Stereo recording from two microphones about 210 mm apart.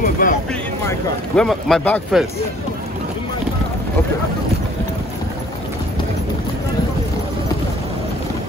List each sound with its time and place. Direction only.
0.0 s speech: 40° left (ahead or behind)
0.8 s speech: 5° left (ahead or behind)